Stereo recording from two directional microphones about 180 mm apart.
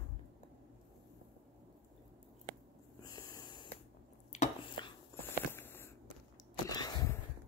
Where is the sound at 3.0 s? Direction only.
20° left (ahead or behind).